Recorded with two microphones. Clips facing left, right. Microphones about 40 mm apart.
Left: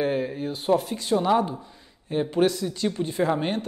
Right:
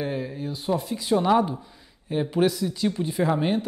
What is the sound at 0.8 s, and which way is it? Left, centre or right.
Speech, centre.